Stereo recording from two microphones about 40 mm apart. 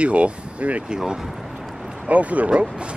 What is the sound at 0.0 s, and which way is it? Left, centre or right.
Speech, right.